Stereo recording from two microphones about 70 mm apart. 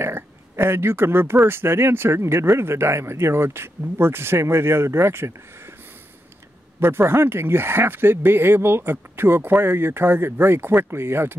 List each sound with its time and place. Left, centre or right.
0.0 s speech: right
6.8 s speech: right